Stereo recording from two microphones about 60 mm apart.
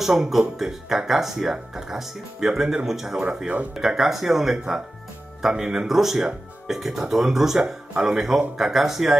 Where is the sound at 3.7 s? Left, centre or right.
Centre.